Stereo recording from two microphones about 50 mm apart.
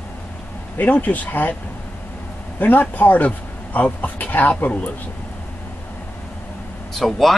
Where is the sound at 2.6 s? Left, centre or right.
Left.